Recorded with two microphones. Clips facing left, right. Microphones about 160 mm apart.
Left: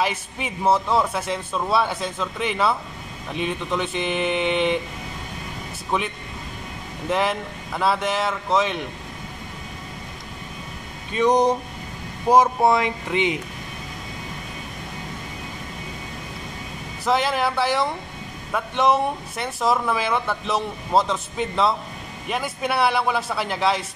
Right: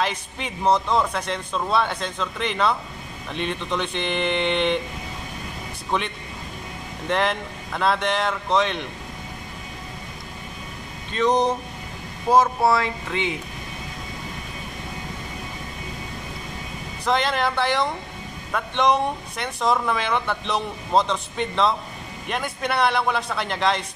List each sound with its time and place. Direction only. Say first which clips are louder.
0.0 s speech: left 1 dB; 5° left (ahead or behind)
5.9 s speech: left 1 dB; 5° left (ahead or behind)
11.1 s speech: left 2 dB; 10° left (ahead or behind)
17.0 s speech: left 1 dB; 5° left (ahead or behind)